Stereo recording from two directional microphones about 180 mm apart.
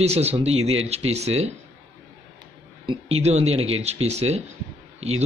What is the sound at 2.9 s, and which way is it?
Speech, 35° right (ahead or behind).